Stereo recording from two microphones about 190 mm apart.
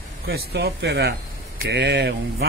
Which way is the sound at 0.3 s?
60° right (ahead or behind).